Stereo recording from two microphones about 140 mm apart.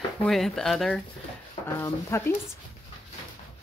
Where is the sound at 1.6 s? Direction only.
20° left (ahead or behind).